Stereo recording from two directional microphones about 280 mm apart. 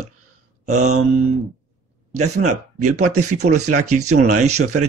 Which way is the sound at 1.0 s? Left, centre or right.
Right.